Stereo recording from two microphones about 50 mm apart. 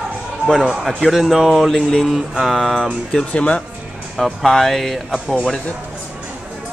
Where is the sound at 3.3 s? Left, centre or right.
Left.